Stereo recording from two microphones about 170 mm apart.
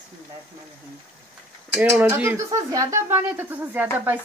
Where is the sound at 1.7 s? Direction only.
10° right (ahead or behind).